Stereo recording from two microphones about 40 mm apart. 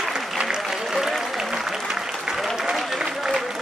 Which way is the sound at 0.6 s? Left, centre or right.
Centre.